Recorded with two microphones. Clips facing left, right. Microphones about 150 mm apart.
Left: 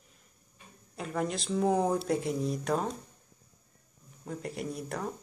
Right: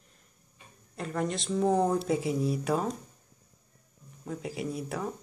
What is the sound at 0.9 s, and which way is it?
Speech, centre (ahead or behind).